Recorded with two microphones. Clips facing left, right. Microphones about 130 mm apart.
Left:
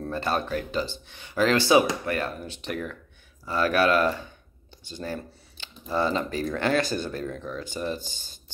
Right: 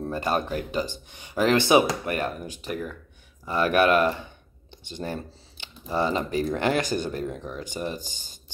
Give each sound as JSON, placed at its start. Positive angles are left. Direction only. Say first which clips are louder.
{"t": 0.1, "sound": "speech", "louder": "even", "side_deg": -15}
{"t": 3.4, "sound": "speech", "louder": "right 2 dB", "side_deg": -15}